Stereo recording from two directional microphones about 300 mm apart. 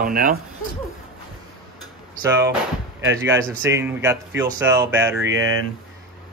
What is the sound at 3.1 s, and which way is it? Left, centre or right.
Speech, centre.